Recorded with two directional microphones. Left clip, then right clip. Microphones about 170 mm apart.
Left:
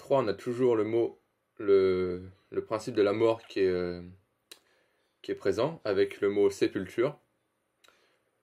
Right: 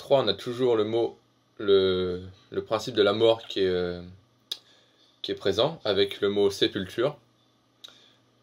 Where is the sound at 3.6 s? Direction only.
20° left (ahead or behind).